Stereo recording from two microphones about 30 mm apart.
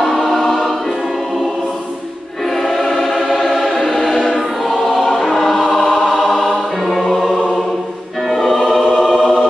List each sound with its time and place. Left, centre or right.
0.0 s choir: centre
2.4 s choir: centre
8.3 s choir: centre